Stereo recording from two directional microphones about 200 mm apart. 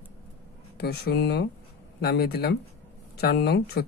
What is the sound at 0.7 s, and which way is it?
Speech, 55° left (ahead or behind).